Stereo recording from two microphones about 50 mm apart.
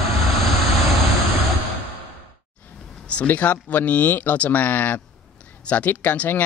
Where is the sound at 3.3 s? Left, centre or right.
Left.